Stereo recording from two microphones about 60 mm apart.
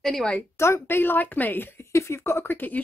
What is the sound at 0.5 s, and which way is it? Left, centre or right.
A woman's voice, left.